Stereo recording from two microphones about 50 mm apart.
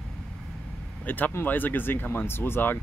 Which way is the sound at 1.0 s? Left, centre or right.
Left.